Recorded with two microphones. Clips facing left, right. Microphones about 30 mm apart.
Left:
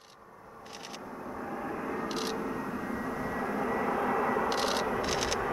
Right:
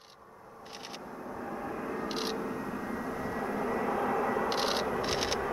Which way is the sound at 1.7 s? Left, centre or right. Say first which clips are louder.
Left 1 dB; centre.